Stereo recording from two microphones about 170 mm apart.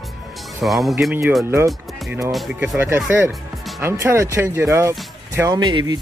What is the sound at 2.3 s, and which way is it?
Speech, centre (ahead or behind).